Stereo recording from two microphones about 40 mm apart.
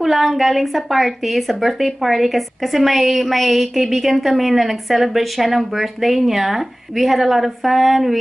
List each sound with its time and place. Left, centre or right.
0.0 s speech: centre